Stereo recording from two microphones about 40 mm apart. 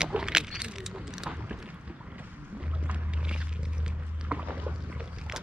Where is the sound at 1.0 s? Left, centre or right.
Centre.